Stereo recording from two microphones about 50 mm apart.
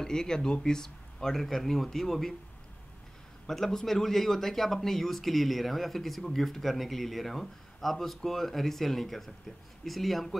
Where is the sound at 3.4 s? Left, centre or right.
Centre.